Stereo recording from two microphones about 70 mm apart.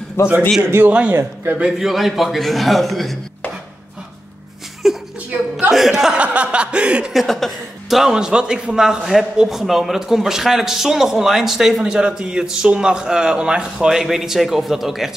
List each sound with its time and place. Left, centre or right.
0.2 s a man's voice: left
0.8 s a man's voice: centre
1.1 s a man's voice: right
1.8 s a man's voice: centre
4.8 s a sound: centre
5.7 s a man's voice: centre
6.1 s chuckle: centre
7.1 s a man's voice: centre